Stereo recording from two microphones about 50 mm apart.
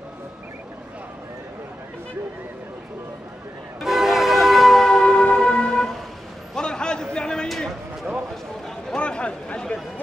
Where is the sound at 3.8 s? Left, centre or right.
Centre.